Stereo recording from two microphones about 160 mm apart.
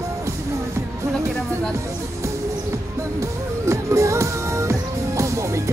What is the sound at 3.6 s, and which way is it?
Music, 20° right (ahead or behind).